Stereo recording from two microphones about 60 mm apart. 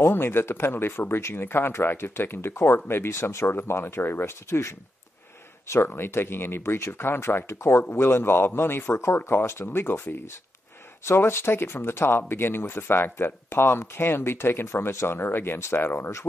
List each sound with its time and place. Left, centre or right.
0.0 s speech: left
5.9 s speech: left